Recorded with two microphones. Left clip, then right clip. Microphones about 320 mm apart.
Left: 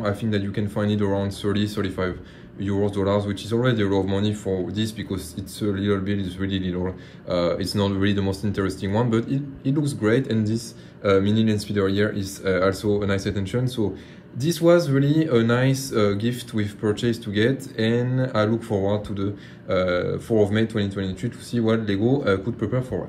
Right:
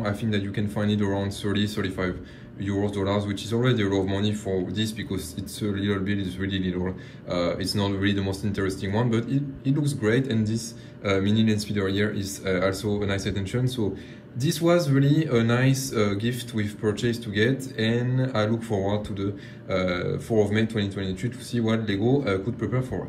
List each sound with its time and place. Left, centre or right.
0.0 s speech: centre
9.3 s a man's voice: left
9.8 s speech: centre
18.7 s speech: left
19.7 s speech: centre